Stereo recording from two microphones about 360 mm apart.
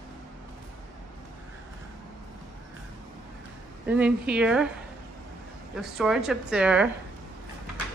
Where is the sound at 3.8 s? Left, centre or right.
Centre.